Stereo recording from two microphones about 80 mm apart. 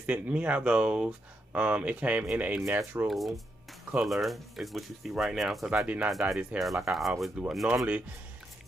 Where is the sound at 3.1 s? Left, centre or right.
Centre.